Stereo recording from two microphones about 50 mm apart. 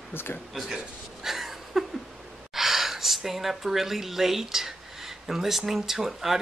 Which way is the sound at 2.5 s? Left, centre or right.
Centre.